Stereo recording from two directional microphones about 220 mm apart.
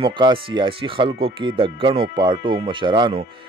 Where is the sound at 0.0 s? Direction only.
20° right (ahead or behind).